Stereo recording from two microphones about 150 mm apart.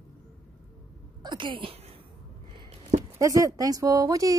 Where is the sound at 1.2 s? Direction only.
30° right (ahead or behind).